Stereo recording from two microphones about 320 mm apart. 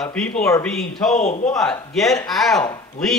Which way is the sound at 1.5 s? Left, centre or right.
Centre.